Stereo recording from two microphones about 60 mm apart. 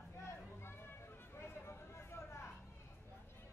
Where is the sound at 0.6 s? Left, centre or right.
Left.